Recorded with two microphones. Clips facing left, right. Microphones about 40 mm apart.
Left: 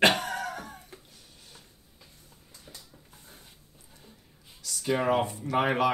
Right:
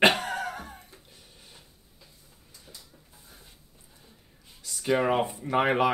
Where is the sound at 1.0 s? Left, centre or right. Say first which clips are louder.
Right 1 dB; right.